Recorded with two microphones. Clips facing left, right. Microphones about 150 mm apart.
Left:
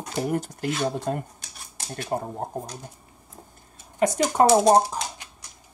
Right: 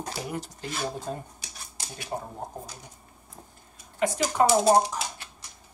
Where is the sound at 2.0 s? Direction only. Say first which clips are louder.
Left 6 dB; 55° left (ahead or behind).